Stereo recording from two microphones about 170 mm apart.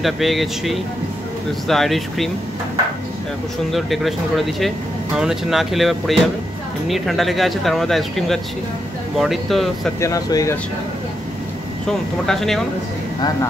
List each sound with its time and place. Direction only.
0.0 s speech: centre (ahead or behind)
3.7 s speech: centre (ahead or behind)
9.9 s speech: 20° left (ahead or behind)
12.3 s speech: centre (ahead or behind)